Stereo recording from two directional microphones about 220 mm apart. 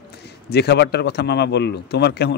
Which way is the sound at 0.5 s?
50° left (ahead or behind).